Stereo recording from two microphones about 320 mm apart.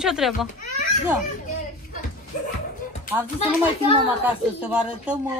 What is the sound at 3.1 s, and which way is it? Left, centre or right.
Speech, left.